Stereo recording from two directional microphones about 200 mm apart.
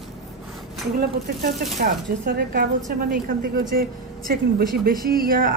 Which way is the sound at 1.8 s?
50° right (ahead or behind).